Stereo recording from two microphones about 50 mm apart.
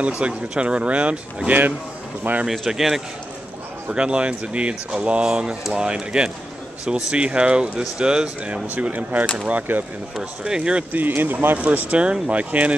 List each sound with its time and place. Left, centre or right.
0.2 s speech: right
2.4 s speech: centre
3.9 s speech: right
8.6 s speech: right
10.1 s speech: centre
10.9 s speech: right
11.5 s speech: right